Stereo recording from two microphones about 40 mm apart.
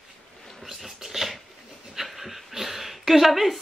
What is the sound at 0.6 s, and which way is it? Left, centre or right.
Dog, centre.